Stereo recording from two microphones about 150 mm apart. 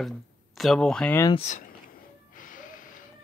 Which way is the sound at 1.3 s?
50° left (ahead or behind).